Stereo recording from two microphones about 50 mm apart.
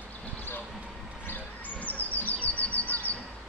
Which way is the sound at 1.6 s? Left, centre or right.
Left.